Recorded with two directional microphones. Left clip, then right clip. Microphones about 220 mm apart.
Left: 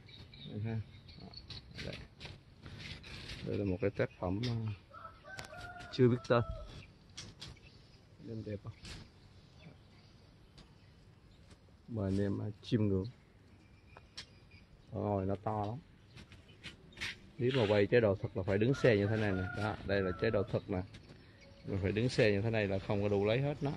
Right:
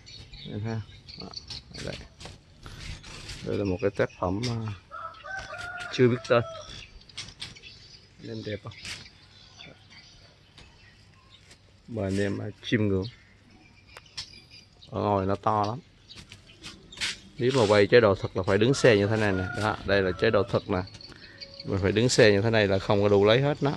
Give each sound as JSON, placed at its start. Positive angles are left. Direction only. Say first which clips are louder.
{"t": 1.8, "sound": "pig", "louder": "right 6 dB", "side_deg": 0}
{"t": 3.4, "sound": "speech", "louder": "right 8 dB", "side_deg": -5}
{"t": 5.9, "sound": "speech", "louder": "right 8 dB", "side_deg": 10}
{"t": 8.6, "sound": "speech", "louder": "right 13 dB", "side_deg": 5}
{"t": 11.9, "sound": "speech", "louder": "right 8 dB", "side_deg": 5}
{"t": 14.9, "sound": "speech", "louder": "right 10 dB", "side_deg": -10}
{"t": 17.1, "sound": "speech", "louder": "right 8 dB", "side_deg": -5}